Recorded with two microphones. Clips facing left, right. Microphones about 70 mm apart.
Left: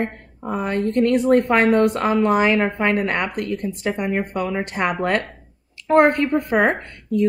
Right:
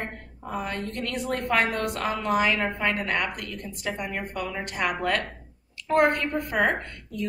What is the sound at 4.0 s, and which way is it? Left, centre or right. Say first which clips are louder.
Speech: left 9 dB; left.